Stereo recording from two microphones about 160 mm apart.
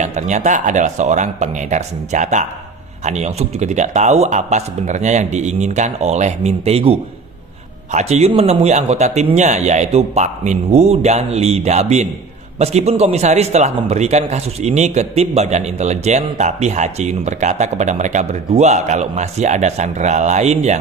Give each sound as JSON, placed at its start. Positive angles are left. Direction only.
{"t": 0.0, "sound": "a man's voice", "side_deg": -50}